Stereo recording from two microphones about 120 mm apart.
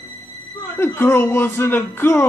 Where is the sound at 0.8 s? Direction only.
20° left (ahead or behind).